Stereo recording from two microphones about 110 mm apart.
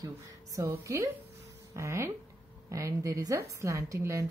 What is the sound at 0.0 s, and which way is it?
A woman's voice, 30° right (ahead or behind).